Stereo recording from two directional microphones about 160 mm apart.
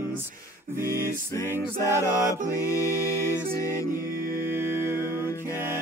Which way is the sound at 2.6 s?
20° left (ahead or behind).